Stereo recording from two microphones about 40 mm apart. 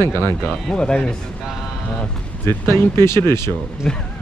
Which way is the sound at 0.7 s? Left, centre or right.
Left.